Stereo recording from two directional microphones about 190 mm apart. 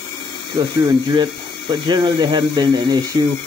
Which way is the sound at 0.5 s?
20° right (ahead or behind).